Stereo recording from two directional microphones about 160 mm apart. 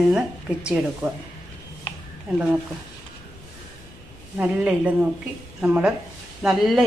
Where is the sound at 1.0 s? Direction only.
15° right (ahead or behind).